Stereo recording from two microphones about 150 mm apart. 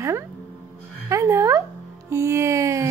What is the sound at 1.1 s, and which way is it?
Music, 20° right (ahead or behind).